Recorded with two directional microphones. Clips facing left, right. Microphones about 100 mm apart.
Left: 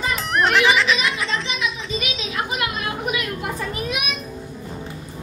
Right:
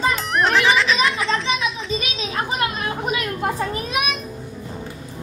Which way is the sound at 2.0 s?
30° right (ahead or behind).